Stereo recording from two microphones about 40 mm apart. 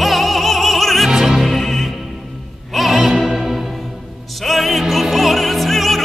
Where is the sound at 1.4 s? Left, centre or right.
Centre.